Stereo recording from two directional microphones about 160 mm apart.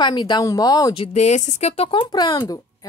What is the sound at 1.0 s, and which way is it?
A woman's voice, 45° left (ahead or behind).